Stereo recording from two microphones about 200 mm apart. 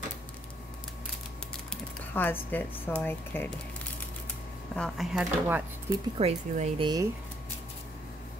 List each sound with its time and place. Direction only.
2.1 s speech: 10° left (ahead or behind)
4.7 s speech: centre (ahead or behind)
6.1 s speech: 30° right (ahead or behind)